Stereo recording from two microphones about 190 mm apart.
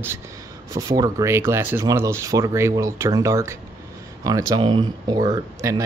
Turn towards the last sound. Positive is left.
turn(degrees=-20)  # may be behind; listen again after turning